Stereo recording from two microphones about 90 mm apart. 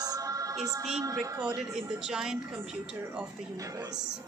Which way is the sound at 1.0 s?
40° right (ahead or behind).